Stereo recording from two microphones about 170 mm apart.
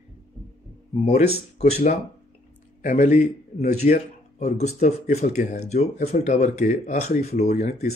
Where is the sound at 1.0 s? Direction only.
40° left (ahead or behind).